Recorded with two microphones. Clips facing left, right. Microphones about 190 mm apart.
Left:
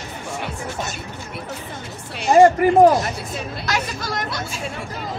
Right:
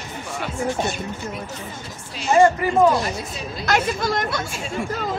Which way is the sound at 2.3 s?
45° left (ahead or behind).